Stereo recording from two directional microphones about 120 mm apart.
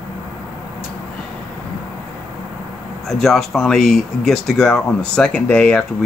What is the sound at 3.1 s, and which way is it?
Speech, centre (ahead or behind).